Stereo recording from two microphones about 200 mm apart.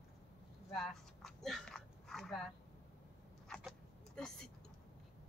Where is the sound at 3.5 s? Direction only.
Centre (ahead or behind).